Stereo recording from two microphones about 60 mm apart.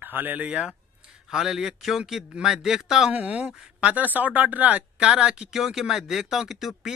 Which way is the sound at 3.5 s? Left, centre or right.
Centre.